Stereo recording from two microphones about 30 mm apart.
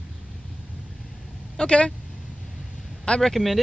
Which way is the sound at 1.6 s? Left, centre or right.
Left.